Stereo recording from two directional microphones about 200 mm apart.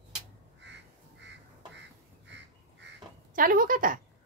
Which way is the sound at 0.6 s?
60° right (ahead or behind).